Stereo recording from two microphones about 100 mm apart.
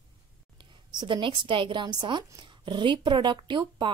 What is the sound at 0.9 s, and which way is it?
Speech, 55° right (ahead or behind).